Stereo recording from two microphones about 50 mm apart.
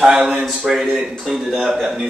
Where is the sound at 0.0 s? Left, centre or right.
Centre.